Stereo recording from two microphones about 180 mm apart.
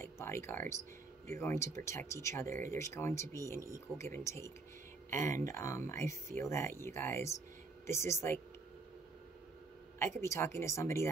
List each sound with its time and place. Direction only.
0.0 s speech: 15° left (ahead or behind)
2.4 s speech: 45° right (ahead or behind)
2.7 s speech: 15° left (ahead or behind)
10.2 s speech: 15° left (ahead or behind)